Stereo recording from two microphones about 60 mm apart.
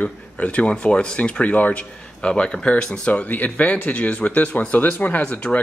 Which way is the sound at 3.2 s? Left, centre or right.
Left.